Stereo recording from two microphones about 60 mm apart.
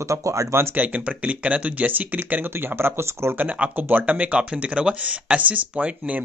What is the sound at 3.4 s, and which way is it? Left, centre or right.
Speech, right.